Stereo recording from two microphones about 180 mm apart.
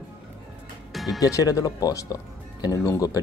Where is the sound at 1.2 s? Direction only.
20° left (ahead or behind).